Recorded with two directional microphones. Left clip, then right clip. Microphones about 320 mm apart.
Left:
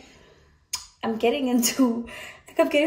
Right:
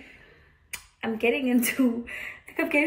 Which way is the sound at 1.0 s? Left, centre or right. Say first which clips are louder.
Left 2 dB; left.